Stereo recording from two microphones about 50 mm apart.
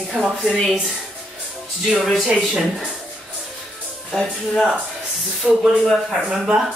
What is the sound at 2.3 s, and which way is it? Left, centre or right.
Speech, right.